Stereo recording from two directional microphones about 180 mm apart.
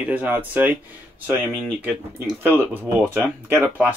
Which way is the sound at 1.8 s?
10° right (ahead or behind).